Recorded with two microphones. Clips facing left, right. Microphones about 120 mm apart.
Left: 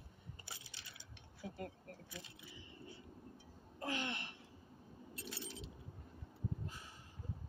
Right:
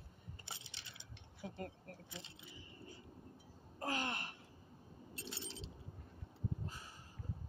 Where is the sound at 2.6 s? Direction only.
40° right (ahead or behind).